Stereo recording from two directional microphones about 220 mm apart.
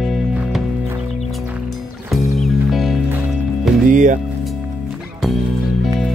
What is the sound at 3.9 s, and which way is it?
Music, 35° right (ahead or behind).